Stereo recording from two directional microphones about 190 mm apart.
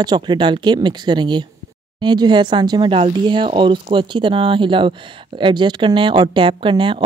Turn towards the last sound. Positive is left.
turn(degrees=-25)  # may be behind; listen again after turning